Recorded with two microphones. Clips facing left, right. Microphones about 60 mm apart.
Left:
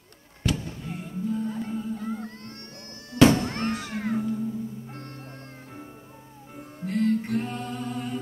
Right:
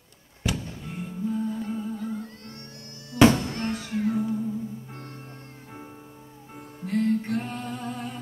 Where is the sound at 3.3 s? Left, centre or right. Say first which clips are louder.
Left 2 dB; left.